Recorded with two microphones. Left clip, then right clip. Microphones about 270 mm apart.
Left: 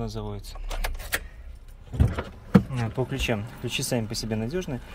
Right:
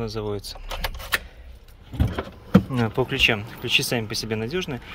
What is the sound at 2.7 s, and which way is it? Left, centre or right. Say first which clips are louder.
Speech: right 8 dB; right.